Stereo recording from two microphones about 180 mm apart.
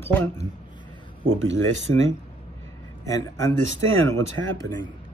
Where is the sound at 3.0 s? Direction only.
20° left (ahead or behind).